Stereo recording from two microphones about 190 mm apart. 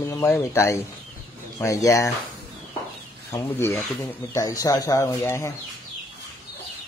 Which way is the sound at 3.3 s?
15° left (ahead or behind).